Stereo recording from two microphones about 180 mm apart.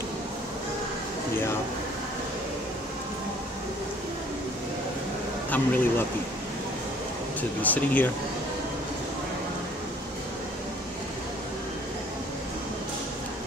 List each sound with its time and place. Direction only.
5.5 s speech: 10° left (ahead or behind)
7.6 s speech: 10° left (ahead or behind)